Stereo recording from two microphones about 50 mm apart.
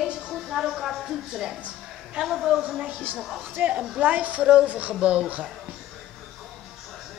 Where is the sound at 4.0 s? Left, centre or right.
Right.